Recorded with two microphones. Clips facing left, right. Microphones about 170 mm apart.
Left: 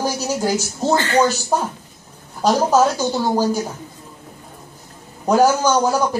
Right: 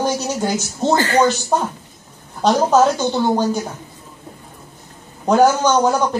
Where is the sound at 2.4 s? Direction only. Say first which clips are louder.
Right 1 dB; 5° left (ahead or behind).